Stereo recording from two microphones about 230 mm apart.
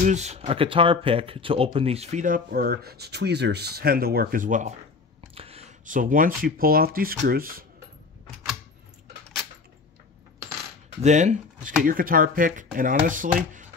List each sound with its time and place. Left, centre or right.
0.0 s speech: right
11.0 s speech: right